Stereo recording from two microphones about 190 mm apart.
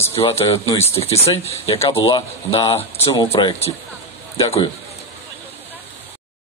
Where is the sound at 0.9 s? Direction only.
30° left (ahead or behind).